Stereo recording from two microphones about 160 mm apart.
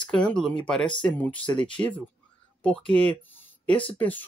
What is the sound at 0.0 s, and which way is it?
Speech, 5° left (ahead or behind).